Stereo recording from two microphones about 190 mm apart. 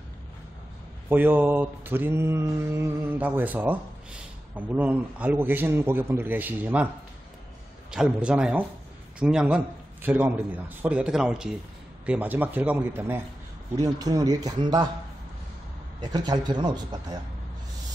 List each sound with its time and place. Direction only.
1.0 s mantra: 10° right (ahead or behind)
7.9 s a man's voice: 5° right (ahead or behind)
10.0 s mantra: 10° right (ahead or behind)
13.7 s a man's voice: 20° right (ahead or behind)
16.0 s a man's voice: 20° right (ahead or behind)